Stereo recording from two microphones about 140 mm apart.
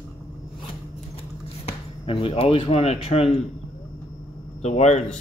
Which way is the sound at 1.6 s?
40° left (ahead or behind).